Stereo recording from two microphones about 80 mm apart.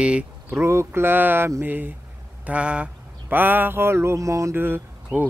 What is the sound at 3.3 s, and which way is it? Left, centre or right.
Mantra, right.